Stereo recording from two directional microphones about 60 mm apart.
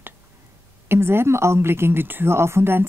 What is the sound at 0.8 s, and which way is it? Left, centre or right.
Speech, right.